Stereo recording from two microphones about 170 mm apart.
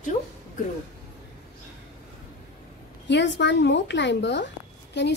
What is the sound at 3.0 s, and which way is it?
A woman's voice, 90° left.